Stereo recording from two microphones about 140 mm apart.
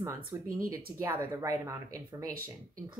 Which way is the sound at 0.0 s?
20° right (ahead or behind).